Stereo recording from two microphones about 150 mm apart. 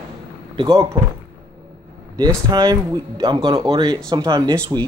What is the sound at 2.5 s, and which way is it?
Speech, 25° right (ahead or behind).